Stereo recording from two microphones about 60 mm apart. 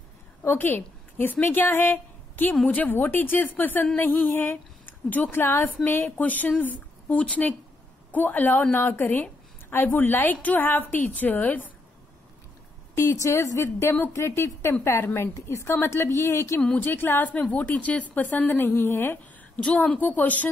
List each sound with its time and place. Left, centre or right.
0.4 s a woman's voice: left
12.9 s a woman's voice: left
17.3 s a woman's voice: left
19.5 s a woman's voice: left